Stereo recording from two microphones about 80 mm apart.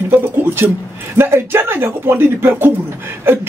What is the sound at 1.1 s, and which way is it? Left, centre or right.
Speech, right.